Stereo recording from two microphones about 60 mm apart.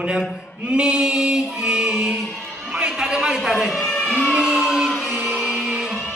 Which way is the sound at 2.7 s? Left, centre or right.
Centre.